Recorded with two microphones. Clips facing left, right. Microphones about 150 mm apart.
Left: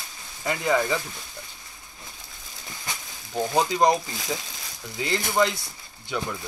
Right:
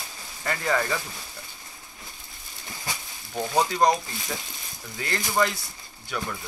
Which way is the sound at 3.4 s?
10° left (ahead or behind).